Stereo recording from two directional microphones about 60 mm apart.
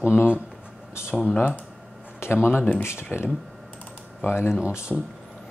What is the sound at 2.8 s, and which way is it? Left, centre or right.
Speech, left.